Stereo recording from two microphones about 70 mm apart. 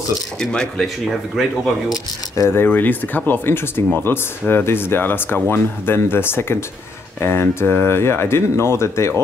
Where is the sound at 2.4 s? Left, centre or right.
Left.